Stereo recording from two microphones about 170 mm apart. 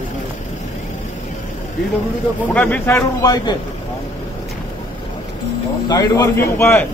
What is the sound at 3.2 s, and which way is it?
Speech, 20° left (ahead or behind).